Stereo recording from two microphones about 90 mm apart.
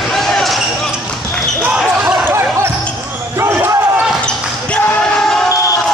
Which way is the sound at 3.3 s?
30° right (ahead or behind).